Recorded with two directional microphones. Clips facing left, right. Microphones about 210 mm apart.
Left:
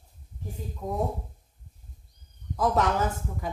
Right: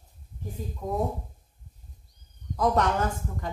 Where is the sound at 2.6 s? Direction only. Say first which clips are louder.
Even; 5° left (ahead or behind).